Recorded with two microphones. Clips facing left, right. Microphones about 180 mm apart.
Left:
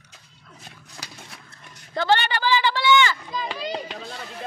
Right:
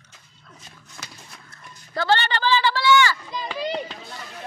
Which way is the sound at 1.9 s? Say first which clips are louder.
Even; 15° left (ahead or behind).